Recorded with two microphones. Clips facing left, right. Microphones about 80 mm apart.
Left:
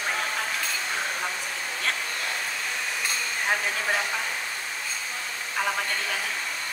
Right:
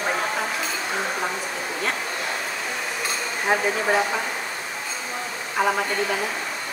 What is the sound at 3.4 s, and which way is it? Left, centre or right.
Speech, right.